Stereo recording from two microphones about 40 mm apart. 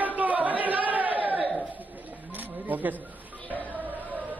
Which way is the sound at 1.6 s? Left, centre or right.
Right.